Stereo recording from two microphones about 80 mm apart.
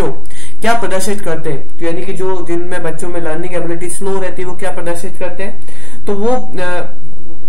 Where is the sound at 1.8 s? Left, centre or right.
Centre.